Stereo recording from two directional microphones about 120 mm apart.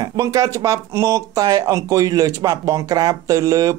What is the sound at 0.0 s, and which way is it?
A man's voice, 30° right (ahead or behind).